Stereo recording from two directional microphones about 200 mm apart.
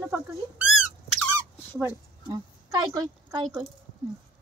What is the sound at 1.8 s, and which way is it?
A woman's voice, 15° right (ahead or behind).